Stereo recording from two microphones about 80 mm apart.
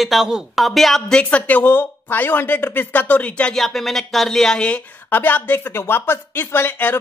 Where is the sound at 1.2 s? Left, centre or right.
Centre.